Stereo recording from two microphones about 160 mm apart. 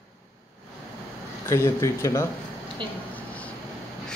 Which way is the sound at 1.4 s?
15° left (ahead or behind).